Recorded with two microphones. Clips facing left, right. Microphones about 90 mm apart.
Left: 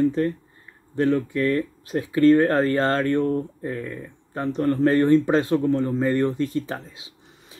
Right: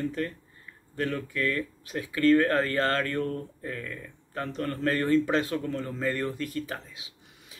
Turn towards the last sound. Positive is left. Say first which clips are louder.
# left 5 dB
turn(degrees=30)  # may be behind; listen again after turning